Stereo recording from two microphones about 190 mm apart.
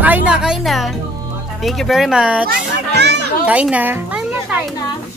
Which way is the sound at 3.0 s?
60° right (ahead or behind).